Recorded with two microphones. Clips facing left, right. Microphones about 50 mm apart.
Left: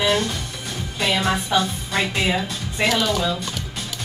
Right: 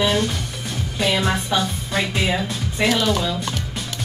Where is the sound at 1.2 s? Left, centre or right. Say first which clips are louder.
Left 1 dB; centre.